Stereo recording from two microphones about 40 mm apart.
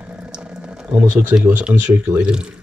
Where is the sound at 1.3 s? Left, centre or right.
Right.